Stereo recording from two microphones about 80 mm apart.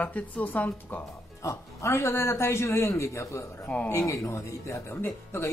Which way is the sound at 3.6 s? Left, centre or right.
Centre.